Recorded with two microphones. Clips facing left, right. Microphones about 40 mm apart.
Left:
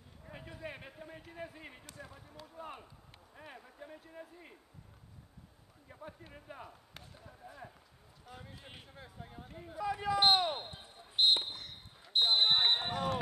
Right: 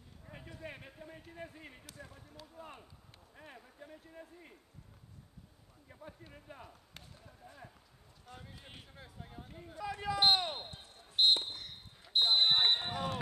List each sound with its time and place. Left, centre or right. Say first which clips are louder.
0.2 s a sound: left 2 dB; centre
3.3 s speech: left 2 dB; centre
5.9 s speech: left 2 dB; centre
10.7 s basketball bounce: left 2 dB; left
11.3 s basketball bounce: left 1 dB; centre
12.9 s music: left 3 dB; centre